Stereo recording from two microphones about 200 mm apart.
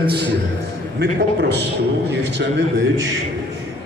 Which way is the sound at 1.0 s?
60° right (ahead or behind).